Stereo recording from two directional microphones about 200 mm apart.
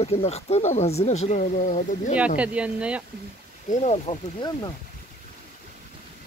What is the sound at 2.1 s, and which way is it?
Speech, 5° right (ahead or behind).